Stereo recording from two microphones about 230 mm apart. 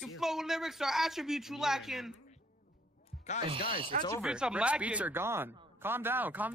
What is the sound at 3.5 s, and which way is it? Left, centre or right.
Speech, right.